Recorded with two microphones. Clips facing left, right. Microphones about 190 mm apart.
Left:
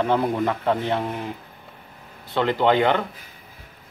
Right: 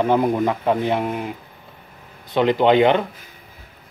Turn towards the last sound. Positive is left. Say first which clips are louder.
# right 4 dB
turn(degrees=-20)  # may be behind; listen again after turning